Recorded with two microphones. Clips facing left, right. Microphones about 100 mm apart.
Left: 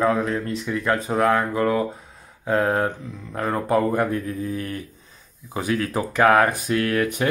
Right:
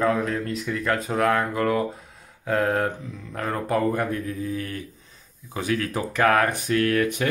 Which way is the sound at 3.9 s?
35° left (ahead or behind).